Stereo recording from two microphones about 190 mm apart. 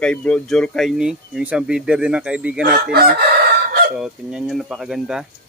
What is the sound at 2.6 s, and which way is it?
Chicken, 55° right (ahead or behind).